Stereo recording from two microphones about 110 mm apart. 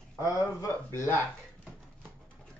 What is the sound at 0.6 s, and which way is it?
Speech, 25° left (ahead or behind).